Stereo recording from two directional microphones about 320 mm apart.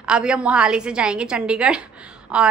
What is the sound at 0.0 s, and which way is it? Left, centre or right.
A woman's voice, centre.